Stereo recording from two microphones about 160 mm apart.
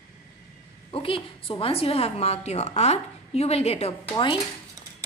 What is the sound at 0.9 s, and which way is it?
A woman's voice, 35° left (ahead or behind).